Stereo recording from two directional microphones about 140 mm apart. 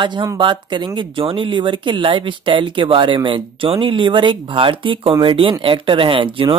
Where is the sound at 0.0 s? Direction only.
30° right (ahead or behind).